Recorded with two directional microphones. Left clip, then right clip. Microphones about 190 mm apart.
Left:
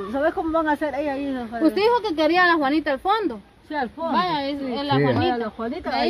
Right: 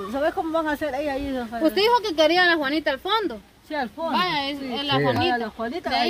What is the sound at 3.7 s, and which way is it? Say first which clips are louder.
Speech: left 1 dB; 15° right (ahead or behind).